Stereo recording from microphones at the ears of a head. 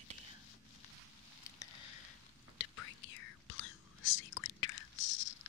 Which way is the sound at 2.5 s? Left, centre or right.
Left.